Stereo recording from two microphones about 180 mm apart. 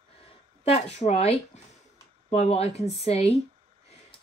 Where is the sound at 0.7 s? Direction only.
35° left (ahead or behind).